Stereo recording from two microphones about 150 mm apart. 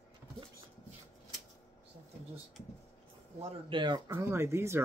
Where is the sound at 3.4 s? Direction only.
30° right (ahead or behind).